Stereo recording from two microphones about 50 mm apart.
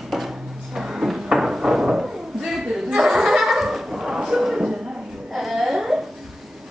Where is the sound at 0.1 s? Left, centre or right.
Centre.